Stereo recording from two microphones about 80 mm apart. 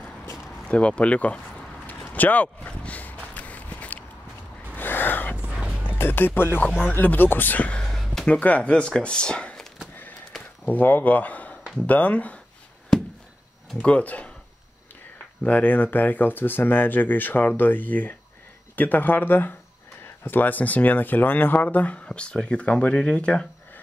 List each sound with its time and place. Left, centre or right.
0.7 s a sound: centre
5.5 s music: centre
5.9 s speech: left
7.8 s a sound: centre
8.3 s speech: centre
10.3 s a sound: centre
10.7 s speech: left
13.8 s speech: centre
15.4 s speech: left